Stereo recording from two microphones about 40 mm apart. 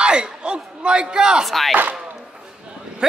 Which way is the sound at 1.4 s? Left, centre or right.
Centre.